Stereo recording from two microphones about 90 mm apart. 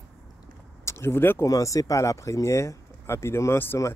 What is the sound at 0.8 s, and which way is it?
Speech, 25° left (ahead or behind).